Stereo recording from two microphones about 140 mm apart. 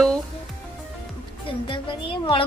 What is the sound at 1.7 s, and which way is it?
Speech, 35° left (ahead or behind).